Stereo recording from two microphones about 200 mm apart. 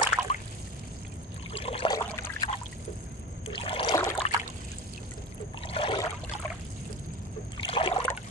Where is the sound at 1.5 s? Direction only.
30° left (ahead or behind).